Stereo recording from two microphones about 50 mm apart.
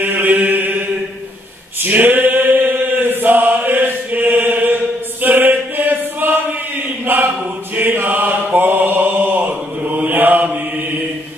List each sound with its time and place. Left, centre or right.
0.0 s mantra: right
1.9 s chant: right
7.1 s mantra: right